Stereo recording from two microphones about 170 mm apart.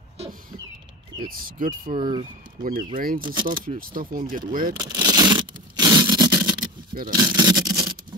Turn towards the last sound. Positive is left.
turn(degrees=-20)  # may be behind; listen again after turning